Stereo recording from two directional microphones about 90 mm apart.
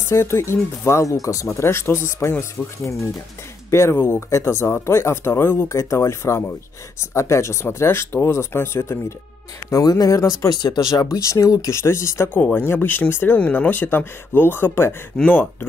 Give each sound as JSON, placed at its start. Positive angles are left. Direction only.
{"t": 0.1, "sound": "speech", "side_deg": 30}
{"t": 9.7, "sound": "speech", "side_deg": 40}